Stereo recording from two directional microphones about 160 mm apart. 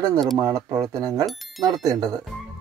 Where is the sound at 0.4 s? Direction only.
20° right (ahead or behind).